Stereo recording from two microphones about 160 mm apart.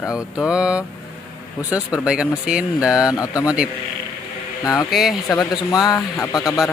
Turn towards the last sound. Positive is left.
turn(degrees=20)  # may be behind; listen again after turning